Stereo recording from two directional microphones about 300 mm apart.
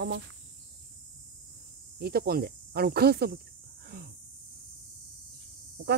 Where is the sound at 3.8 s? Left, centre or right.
Right.